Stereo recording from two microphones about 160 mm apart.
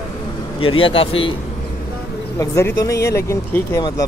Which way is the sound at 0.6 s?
35° left (ahead or behind).